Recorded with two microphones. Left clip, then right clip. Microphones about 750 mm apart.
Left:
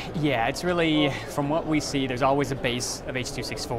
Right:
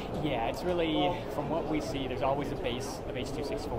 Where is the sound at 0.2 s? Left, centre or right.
Left.